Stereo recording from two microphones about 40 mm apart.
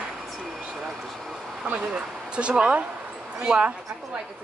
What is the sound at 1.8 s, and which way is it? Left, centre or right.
A woman's voice, right.